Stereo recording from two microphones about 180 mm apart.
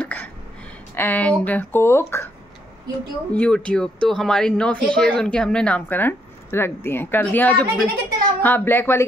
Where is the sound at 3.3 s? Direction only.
5° left (ahead or behind).